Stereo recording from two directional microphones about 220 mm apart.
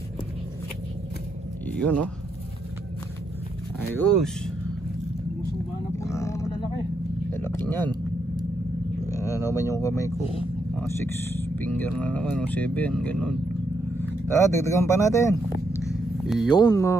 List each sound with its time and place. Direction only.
1.8 s speech: 5° left (ahead or behind)
3.9 s speech: 5° left (ahead or behind)
5.9 s grunt: 15° left (ahead or behind)
7.2 s a sound: 10° left (ahead or behind)
9.1 s a sound: 10° right (ahead or behind)
9.5 s speech: 15° left (ahead or behind)
10.2 s speech: 25° left (ahead or behind)
10.8 s speech: 10° left (ahead or behind)
15.9 s a sound: centre (ahead or behind)
16.4 s speech: 20° left (ahead or behind)